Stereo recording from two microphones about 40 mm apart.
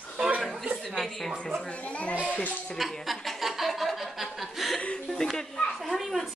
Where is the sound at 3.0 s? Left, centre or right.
Centre.